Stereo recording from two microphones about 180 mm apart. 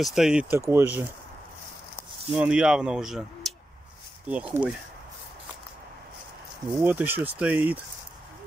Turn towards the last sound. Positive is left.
turn(degrees=-10)  # may be behind; listen again after turning